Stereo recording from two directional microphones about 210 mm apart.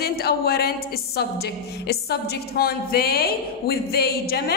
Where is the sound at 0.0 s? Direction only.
50° left (ahead or behind).